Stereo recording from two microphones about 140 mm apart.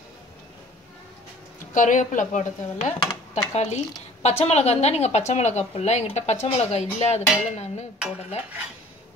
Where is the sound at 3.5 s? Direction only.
50° left (ahead or behind).